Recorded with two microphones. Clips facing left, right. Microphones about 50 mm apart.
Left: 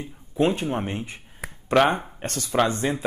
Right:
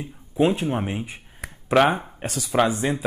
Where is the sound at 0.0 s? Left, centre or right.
Centre.